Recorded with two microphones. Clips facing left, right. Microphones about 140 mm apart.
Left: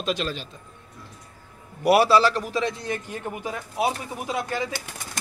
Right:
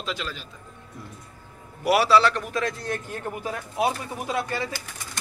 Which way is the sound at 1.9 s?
35° left (ahead or behind).